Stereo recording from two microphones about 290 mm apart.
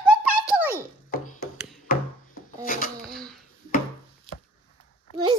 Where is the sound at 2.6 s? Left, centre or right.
Left.